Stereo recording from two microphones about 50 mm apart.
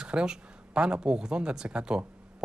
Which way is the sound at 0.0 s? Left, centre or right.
Centre.